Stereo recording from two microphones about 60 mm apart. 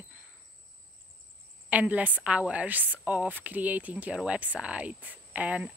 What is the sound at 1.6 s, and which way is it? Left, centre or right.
A woman's voice, right.